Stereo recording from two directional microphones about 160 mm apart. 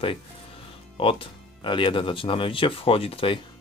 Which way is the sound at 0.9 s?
35° left (ahead or behind).